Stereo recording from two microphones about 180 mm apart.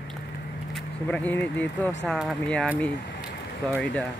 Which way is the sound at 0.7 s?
5° left (ahead or behind).